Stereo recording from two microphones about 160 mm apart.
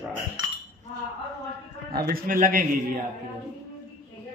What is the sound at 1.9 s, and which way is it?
Speech, 70° right (ahead or behind).